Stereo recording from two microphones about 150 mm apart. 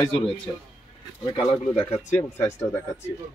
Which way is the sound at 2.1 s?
20° left (ahead or behind).